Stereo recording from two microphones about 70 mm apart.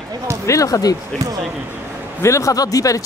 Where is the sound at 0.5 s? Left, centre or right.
Left.